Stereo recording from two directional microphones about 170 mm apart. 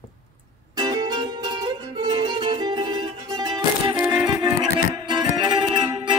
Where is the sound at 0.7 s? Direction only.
25° right (ahead or behind).